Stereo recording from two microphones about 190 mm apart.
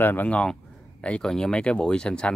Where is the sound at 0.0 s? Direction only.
10° left (ahead or behind).